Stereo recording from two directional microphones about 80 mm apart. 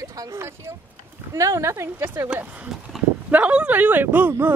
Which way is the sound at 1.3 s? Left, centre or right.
Right.